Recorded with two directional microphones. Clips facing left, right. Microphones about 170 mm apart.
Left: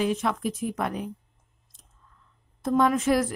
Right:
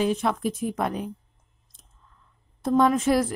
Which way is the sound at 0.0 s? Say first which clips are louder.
Right 2 dB; 30° right (ahead or behind).